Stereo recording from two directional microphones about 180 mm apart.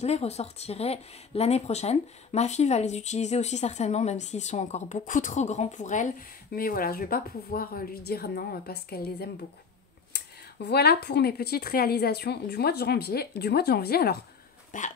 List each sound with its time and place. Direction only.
0.0 s speech: 35° left (ahead or behind); by 14.1 s 60° left (ahead or behind)
14.7 s speech: 45° left (ahead or behind)